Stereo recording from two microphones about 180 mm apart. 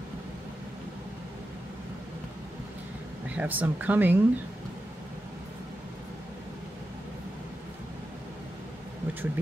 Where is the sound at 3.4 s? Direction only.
10° right (ahead or behind).